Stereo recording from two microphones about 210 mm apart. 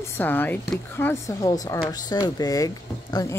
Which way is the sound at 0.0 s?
10° left (ahead or behind).